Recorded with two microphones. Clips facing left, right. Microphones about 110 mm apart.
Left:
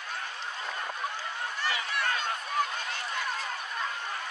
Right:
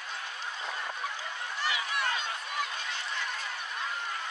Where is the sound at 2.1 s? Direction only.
50° left (ahead or behind).